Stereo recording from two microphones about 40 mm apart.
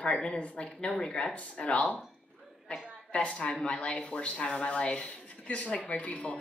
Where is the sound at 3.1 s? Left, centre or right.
Left.